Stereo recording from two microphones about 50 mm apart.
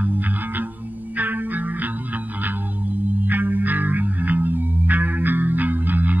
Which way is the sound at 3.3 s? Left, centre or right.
Right.